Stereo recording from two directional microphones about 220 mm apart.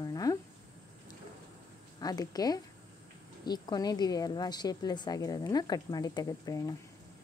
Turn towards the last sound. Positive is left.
turn(degrees=15)  # may be behind; listen again after turning